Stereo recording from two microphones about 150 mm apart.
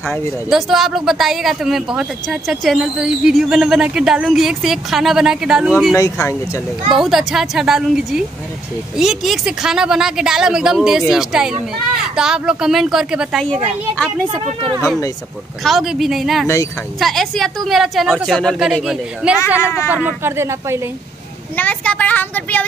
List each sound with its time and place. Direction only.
0.5 s speech: centre (ahead or behind)
5.9 s speech: 20° left (ahead or behind)
7.0 s speech: centre (ahead or behind)
15.6 s speech: centre (ahead or behind)
20.1 s a woman's voice: 15° right (ahead or behind)
21.5 s a woman's voice: 10° left (ahead or behind)